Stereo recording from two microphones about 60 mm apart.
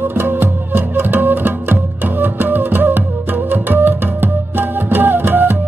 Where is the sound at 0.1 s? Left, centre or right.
Right.